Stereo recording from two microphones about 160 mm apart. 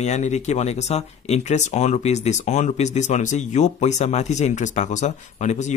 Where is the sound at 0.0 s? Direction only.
45° left (ahead or behind).